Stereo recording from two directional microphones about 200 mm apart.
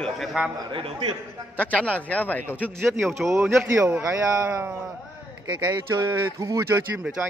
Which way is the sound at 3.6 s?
10° right (ahead or behind).